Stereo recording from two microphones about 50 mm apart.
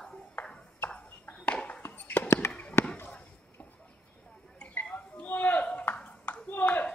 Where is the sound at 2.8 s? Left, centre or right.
Left.